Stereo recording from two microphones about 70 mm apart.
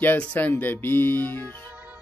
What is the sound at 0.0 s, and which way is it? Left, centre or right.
Speech, left.